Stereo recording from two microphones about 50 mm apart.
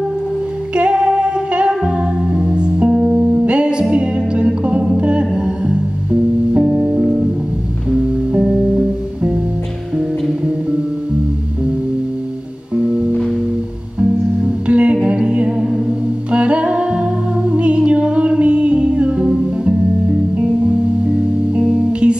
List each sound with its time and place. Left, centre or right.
0.7 s female singing: right
1.7 s music: centre
6.5 s music: right
6.8 s music: centre
8.5 s music: centre
12.8 s music: right
14.7 s humming: right
16.3 s music: right
21.5 s music: centre